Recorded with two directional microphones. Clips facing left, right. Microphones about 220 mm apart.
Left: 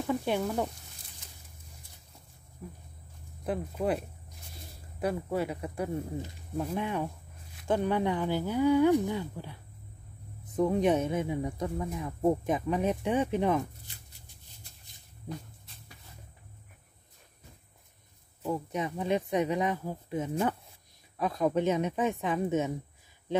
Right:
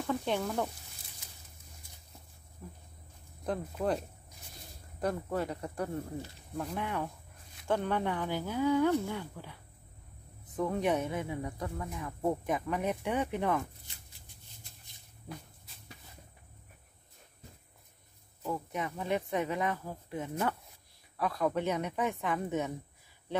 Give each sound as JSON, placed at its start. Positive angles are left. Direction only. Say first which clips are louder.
{"t": 0.0, "sound": "frying", "louder": "left 3 dB", "side_deg": 10}
{"t": 2.6, "sound": "speech", "louder": "left 4 dB", "side_deg": 10}
{"t": 5.0, "sound": "speech", "louder": "left 2 dB", "side_deg": 10}
{"t": 18.4, "sound": "speech", "louder": "left 4 dB", "side_deg": 20}